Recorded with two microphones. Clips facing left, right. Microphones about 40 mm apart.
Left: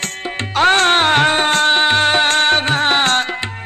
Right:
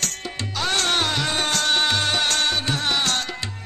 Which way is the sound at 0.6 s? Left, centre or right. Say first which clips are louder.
Left 10 dB; left.